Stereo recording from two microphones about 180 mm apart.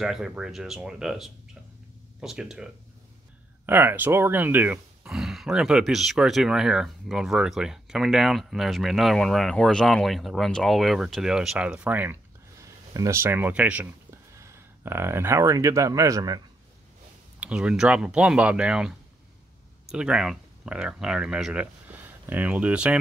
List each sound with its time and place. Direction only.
0.0 s speech: 5° right (ahead or behind); by 16.3 s 20° right (ahead or behind)
17.4 s speech: 5° right (ahead or behind)